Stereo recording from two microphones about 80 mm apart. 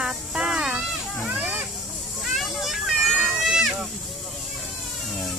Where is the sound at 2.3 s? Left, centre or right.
Centre.